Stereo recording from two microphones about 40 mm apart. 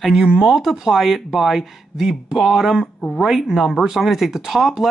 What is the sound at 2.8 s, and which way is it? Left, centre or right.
Speech, left.